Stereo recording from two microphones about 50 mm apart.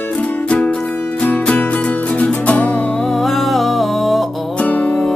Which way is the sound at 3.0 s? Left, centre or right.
Centre.